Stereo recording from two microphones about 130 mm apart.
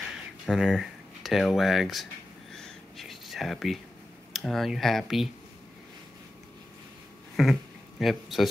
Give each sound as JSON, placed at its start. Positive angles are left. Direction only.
{"t": 0.5, "sound": "speech", "side_deg": -5}
{"t": 2.5, "sound": "a sound", "side_deg": 0}
{"t": 4.3, "sound": "speech", "side_deg": 0}
{"t": 7.4, "sound": "speech", "side_deg": 0}